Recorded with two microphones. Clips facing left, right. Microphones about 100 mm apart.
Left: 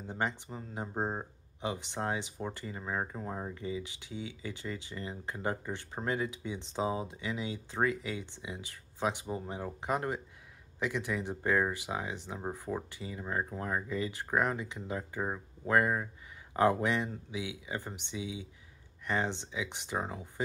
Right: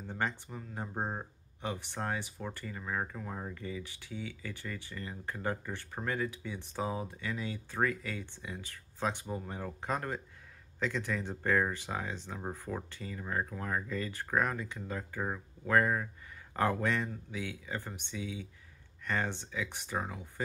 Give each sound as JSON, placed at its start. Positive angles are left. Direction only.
{"t": 0.0, "sound": "speech", "side_deg": 15}